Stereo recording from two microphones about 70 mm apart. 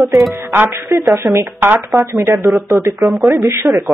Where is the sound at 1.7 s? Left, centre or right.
Right.